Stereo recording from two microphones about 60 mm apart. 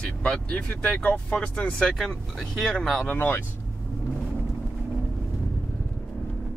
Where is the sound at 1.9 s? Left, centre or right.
Centre.